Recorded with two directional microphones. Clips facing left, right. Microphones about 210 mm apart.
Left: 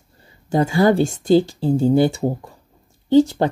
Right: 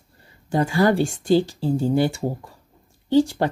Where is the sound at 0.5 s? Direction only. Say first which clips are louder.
Left 3 dB; 25° left (ahead or behind).